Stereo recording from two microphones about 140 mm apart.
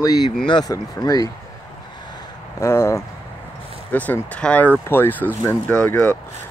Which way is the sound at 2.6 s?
20° left (ahead or behind).